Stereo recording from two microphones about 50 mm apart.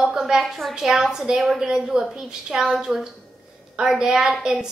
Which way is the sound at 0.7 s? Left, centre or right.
Centre.